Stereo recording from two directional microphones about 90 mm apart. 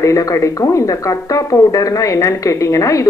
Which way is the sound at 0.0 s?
40° left (ahead or behind).